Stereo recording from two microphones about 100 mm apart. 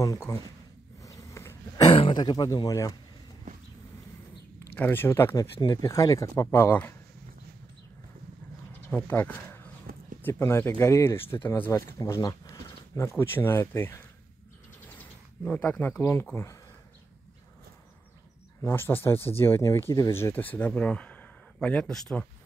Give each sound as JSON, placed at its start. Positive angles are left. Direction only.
{"t": 0.0, "sound": "speech", "side_deg": 30}
{"t": 1.0, "sound": "a sound", "side_deg": 30}
{"t": 1.9, "sound": "a sound", "side_deg": 70}
{"t": 2.1, "sound": "speech", "side_deg": 45}
{"t": 4.7, "sound": "speech", "side_deg": 20}
{"t": 5.3, "sound": "speech", "side_deg": 40}
{"t": 8.9, "sound": "speech", "side_deg": 20}
{"t": 11.7, "sound": "speech", "side_deg": 35}
{"t": 13.1, "sound": "speech", "side_deg": 20}
{"t": 14.9, "sound": "a sound", "side_deg": 15}
{"t": 16.0, "sound": "speech", "side_deg": 25}
{"t": 18.6, "sound": "speech", "side_deg": 25}